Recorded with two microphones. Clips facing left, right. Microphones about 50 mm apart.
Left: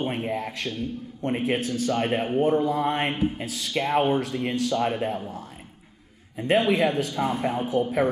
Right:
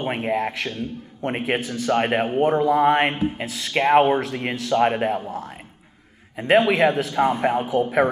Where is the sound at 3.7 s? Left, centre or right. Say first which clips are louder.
Right 7 dB; right.